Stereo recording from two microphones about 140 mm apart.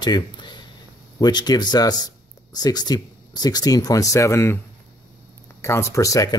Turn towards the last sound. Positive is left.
turn(degrees=25)  # may be behind; listen again after turning